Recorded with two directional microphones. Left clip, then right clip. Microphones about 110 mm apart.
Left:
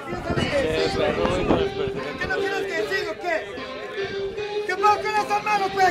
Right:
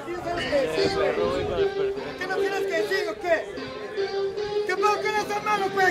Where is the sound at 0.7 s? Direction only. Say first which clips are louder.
Left 1 dB; 30° left (ahead or behind).